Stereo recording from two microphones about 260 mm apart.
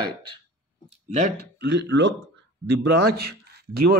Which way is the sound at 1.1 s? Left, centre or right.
Right.